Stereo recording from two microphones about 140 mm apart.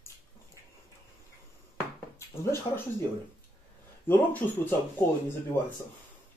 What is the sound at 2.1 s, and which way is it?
Speech, 20° left (ahead or behind).